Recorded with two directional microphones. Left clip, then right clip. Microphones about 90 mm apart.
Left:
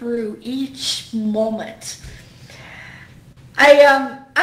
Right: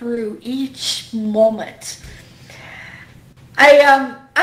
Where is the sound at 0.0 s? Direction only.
25° right (ahead or behind).